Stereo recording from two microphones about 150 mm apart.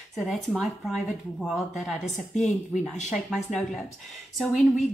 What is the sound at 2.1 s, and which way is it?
Speech, 55° left (ahead or behind).